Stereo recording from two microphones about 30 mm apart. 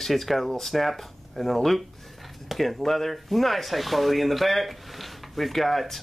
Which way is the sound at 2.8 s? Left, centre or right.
Centre.